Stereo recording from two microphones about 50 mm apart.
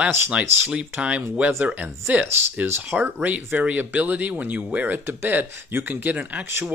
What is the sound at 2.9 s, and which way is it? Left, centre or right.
Speech, centre.